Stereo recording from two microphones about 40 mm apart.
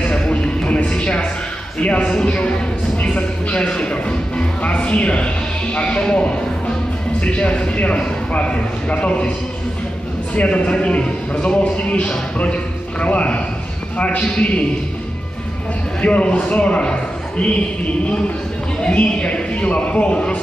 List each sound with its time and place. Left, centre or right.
0.1 s a sound: left
1.8 s a man's voice: left
10.4 s a man's voice: left
16.0 s a man's voice: left